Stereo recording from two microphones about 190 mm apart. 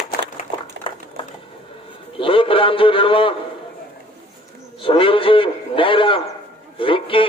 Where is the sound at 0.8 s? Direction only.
25° left (ahead or behind).